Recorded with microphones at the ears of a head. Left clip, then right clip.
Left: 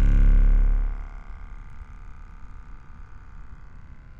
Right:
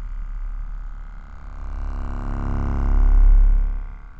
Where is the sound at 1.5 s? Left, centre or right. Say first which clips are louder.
Right 10 dB; right.